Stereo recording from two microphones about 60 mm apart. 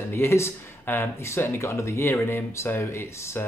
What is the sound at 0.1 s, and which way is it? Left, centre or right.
Speech, left.